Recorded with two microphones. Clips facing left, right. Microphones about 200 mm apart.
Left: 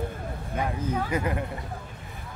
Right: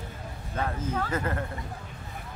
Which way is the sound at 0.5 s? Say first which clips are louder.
Left 2 dB; 15° left (ahead or behind).